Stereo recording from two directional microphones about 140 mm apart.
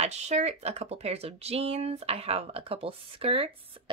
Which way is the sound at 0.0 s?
50° right (ahead or behind).